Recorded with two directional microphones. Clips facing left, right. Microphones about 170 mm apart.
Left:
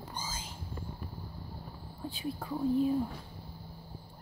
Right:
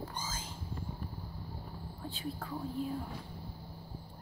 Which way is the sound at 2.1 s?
15° left (ahead or behind).